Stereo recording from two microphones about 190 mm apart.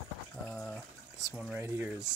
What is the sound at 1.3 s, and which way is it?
Speech, centre (ahead or behind).